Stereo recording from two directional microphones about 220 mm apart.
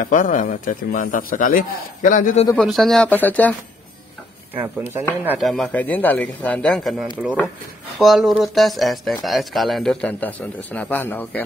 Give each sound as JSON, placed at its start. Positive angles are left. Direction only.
{"t": 0.0, "sound": "a man's voice", "side_deg": 35}
{"t": 2.5, "sound": "speech", "side_deg": 0}
{"t": 4.6, "sound": "speech", "side_deg": -10}